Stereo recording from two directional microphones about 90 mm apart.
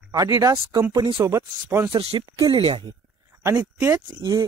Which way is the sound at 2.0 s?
85° right.